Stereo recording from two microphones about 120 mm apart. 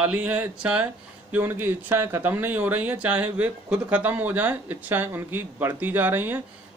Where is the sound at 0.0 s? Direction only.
10° right (ahead or behind).